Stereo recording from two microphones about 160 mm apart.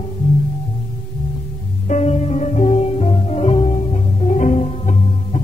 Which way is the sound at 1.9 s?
45° left (ahead or behind).